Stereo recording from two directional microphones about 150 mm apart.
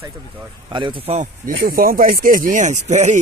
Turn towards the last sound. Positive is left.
turn(degrees=-50)  # may be behind; listen again after turning